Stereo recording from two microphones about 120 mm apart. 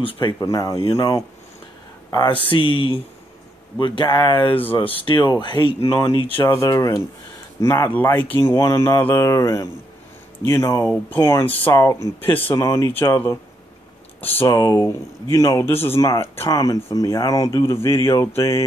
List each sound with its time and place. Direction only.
0.0 s speech: 45° left (ahead or behind)
0.4 s speech: 30° left (ahead or behind)
2.0 s a sound: 30° left (ahead or behind)
2.5 s speech: 45° left (ahead or behind)
6.4 s speech: 30° left (ahead or behind); by 12.5 s 15° left (ahead or behind)
12.5 s speech: 25° left (ahead or behind)